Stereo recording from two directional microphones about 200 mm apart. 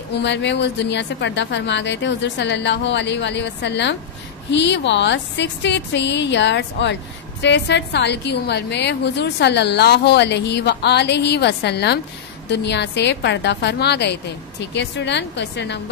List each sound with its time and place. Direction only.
0.2 s a woman's voice: 60° left (ahead or behind)